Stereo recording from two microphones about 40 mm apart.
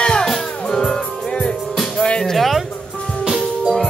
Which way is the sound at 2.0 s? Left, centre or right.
Left.